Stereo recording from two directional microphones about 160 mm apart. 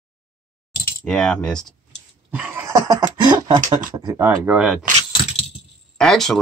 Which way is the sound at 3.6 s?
25° right (ahead or behind).